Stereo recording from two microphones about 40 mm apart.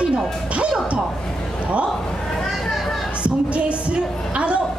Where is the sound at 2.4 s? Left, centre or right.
Centre.